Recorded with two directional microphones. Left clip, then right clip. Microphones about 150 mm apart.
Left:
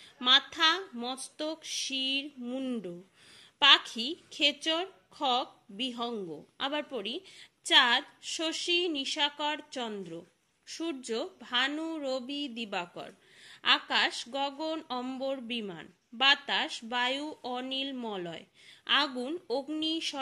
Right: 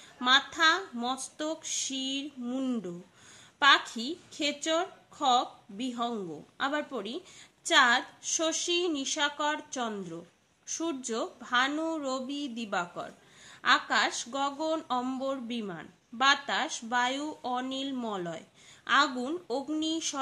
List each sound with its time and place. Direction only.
0.2 s a woman's voice: 15° left (ahead or behind)